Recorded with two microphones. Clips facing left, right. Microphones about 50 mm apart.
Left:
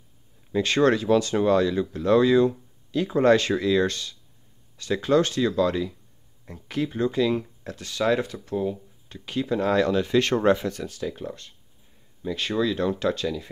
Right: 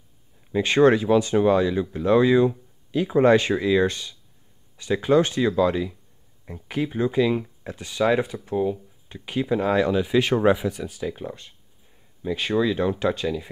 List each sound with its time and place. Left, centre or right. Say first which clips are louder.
0.5 s speech: right 3 dB; centre